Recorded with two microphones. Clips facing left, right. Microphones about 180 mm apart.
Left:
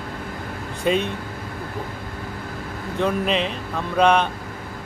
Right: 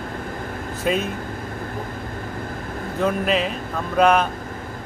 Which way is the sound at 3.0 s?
5° right (ahead or behind).